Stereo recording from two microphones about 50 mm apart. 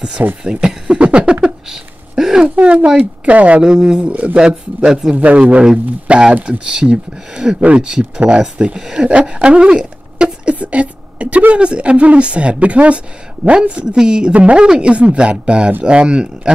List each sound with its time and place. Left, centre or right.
0.4 s speech: centre
2.1 s a sound: centre
2.6 s speech: right
4.1 s speech: right
4.4 s speech: centre
5.1 s speech: right